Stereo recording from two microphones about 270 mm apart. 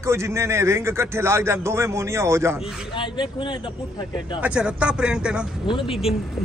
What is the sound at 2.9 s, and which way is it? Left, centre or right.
Speech, centre.